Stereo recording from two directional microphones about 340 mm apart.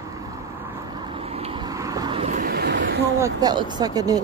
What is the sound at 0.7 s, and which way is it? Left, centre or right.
Vehicle, centre.